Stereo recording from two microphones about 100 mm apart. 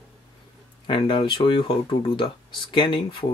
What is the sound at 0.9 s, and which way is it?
Speech, 55° left (ahead or behind).